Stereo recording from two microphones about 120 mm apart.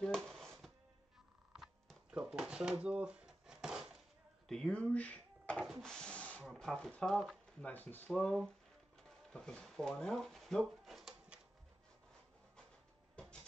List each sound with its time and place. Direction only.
0.0 s music: 5° left (ahead or behind)
1.6 s drawer open or close: 5° right (ahead or behind)
4.5 s a sound: 5° left (ahead or behind)
5.7 s speech: 5° left (ahead or behind)
7.6 s speech: 15° left (ahead or behind); by 11.3 s centre (ahead or behind)
13.1 s a sound: 5° left (ahead or behind)